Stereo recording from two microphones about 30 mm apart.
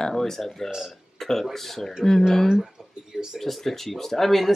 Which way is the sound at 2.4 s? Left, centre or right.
Centre.